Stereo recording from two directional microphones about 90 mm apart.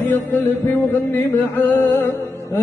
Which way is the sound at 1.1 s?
25° left (ahead or behind).